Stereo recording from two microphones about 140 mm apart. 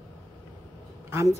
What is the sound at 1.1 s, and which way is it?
Speech, 20° right (ahead or behind).